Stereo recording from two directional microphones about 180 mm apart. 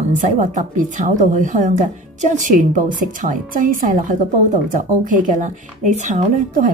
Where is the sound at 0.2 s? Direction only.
45° right (ahead or behind).